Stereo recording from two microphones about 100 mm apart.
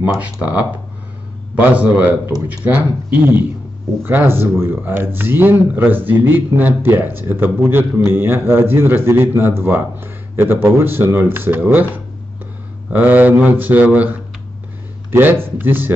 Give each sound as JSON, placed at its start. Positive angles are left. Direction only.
{"t": 0.0, "sound": "speech", "side_deg": -15}
{"t": 12.9, "sound": "speech", "side_deg": -20}